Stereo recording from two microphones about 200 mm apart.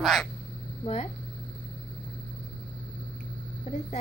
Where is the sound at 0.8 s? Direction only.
35° left (ahead or behind).